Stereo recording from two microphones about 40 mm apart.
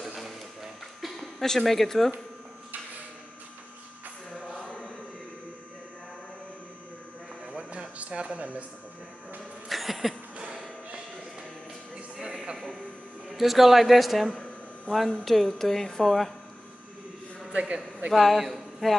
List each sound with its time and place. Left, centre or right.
0.0 s a sound: centre
1.4 s a woman's voice: centre
4.6 s chant: left
7.5 s a sound: right
9.7 s cough: centre
13.3 s a man's voice: centre
17.5 s a man's voice: right
18.1 s speech: centre